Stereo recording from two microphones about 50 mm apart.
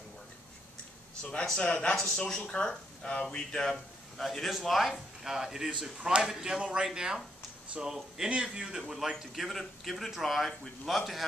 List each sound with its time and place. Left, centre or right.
1.6 s speech: left
4.2 s speech: centre
5.2 s speech: centre
9.1 s speech: centre